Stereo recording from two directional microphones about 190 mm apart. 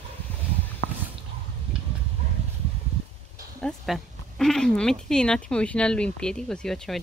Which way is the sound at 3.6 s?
Centre (ahead or behind).